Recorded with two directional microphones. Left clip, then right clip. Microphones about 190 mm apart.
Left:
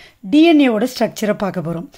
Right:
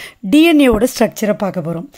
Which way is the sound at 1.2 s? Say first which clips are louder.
Right 2 dB; 10° right (ahead or behind).